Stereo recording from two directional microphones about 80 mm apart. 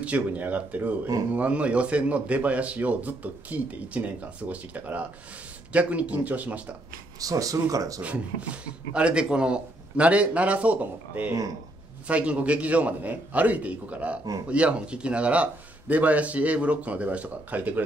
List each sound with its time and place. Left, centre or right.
0.0 s a man's voice: centre
7.2 s speech: right
8.0 s a man's voice: centre